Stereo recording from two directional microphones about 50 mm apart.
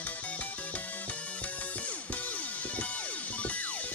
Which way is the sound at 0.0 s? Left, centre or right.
Left.